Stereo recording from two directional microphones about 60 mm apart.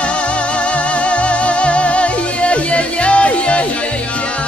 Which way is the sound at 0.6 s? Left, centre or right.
Left.